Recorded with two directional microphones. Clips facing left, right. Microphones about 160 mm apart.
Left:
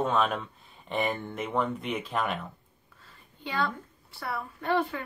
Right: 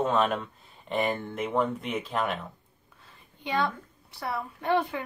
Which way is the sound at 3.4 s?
20° right (ahead or behind).